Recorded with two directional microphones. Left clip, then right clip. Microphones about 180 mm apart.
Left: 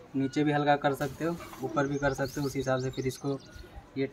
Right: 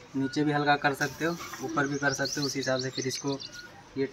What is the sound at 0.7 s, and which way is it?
Speech, 5° left (ahead or behind).